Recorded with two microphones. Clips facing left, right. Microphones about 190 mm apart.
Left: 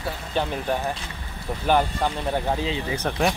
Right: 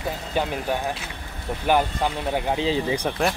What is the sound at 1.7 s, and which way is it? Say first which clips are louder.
Speech: even; 10° right (ahead or behind).